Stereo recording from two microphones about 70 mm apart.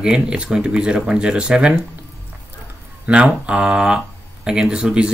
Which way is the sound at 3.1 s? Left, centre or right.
Centre.